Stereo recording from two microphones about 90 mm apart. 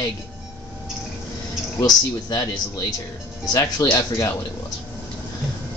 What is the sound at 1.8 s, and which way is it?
Speech, 50° left (ahead or behind).